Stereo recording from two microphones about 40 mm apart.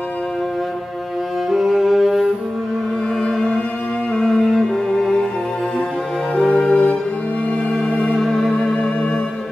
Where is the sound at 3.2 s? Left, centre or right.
Centre.